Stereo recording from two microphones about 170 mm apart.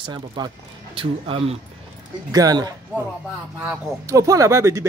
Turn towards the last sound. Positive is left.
turn(degrees=-15)  # may be behind; listen again after turning